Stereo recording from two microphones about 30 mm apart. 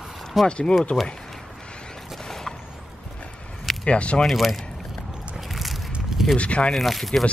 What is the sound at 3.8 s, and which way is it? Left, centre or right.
Speech, left.